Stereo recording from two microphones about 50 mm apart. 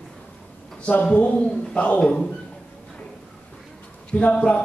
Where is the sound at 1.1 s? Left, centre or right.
Left.